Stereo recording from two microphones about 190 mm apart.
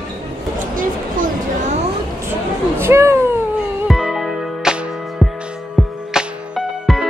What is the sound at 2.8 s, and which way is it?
Speech, 15° right (ahead or behind).